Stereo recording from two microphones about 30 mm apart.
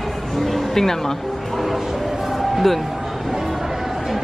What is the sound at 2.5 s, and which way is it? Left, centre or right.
Speech, centre.